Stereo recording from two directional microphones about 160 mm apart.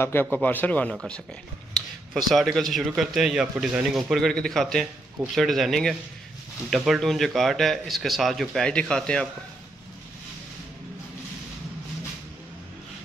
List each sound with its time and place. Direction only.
0.0 s a man's voice: 15° left (ahead or behind)